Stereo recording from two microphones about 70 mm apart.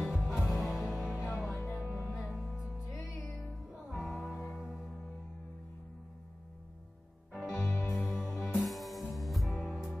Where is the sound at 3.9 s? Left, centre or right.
Centre.